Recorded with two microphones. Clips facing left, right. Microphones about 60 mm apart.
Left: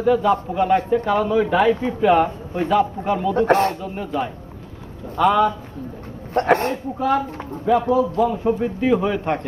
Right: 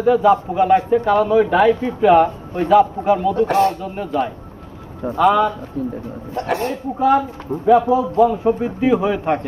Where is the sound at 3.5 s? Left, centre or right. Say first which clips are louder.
Even; left.